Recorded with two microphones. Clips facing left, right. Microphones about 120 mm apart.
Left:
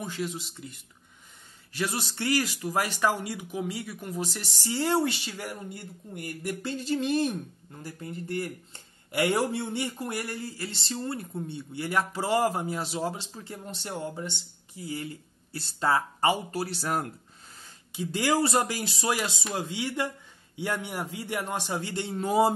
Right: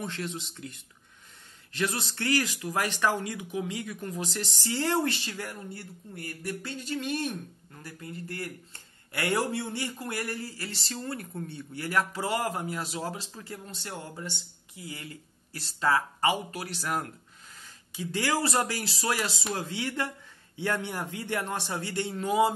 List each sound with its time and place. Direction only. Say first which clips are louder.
0.0 s speech: left 2 dB; 5° left (ahead or behind); by 22.5 s 35° left (ahead or behind)